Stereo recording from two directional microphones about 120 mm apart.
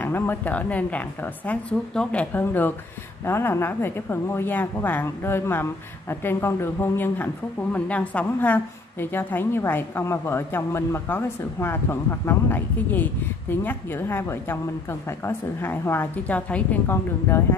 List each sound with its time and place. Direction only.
0.0 s a woman's voice: 15° left (ahead or behind)